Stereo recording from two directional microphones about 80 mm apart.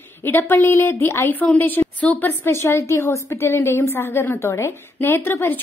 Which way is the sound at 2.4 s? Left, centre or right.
Left.